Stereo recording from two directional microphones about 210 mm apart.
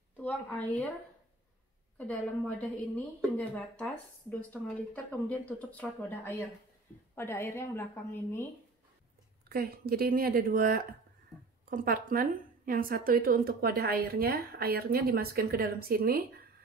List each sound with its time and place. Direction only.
0.2 s a woman's voice: 5° left (ahead or behind)
2.0 s a woman's voice: 5° left (ahead or behind)
9.5 s a woman's voice: 45° right (ahead or behind)